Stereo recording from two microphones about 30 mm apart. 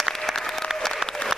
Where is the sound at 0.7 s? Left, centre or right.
Right.